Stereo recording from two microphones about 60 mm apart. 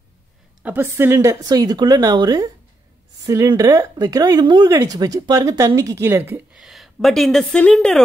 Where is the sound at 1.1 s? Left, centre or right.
Right.